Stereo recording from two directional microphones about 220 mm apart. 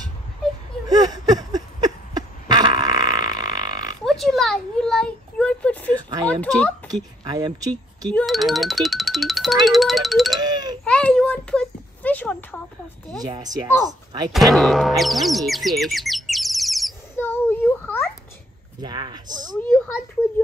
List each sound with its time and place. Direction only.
0.8 s a sound: 15° right (ahead or behind)
4.0 s a sound: centre (ahead or behind)
6.2 s a child's voice: 5° left (ahead or behind)
7.2 s speech: 20° right (ahead or behind)
8.1 s a child's voice: 5° left (ahead or behind)
10.4 s wind chime: 20° right (ahead or behind)
10.8 s a sound: 5° left (ahead or behind)
13.5 s speech: 20° right (ahead or behind)
14.3 s chirp: centre (ahead or behind)
18.8 s speech: 20° right (ahead or behind)